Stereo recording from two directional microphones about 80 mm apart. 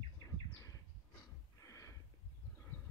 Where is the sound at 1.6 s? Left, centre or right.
Left.